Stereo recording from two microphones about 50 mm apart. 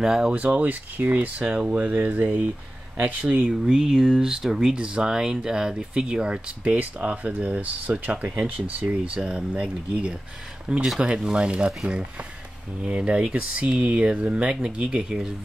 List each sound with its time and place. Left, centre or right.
0.0 s speech: centre
0.3 s speech: right
3.6 s speech: centre
4.7 s speech: right